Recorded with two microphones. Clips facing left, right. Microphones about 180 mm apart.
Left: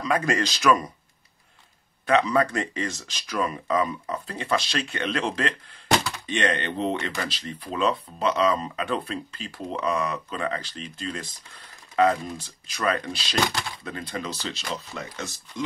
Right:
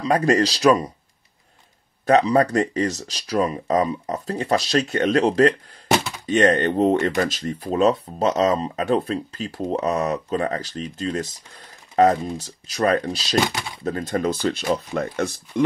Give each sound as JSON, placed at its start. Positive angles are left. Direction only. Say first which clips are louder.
{"t": 0.0, "sound": "speech", "louder": "right 6 dB", "side_deg": -35}
{"t": 2.0, "sound": "speech", "louder": "right 5 dB", "side_deg": -40}
{"t": 13.5, "sound": "a sound", "louder": "right 1 dB", "side_deg": 0}
{"t": 13.8, "sound": "speech", "louder": "right 15 dB", "side_deg": -45}